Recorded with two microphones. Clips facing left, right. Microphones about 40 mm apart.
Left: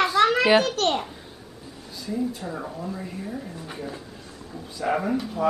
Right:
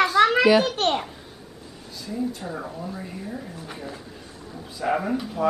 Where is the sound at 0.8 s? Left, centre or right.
Centre.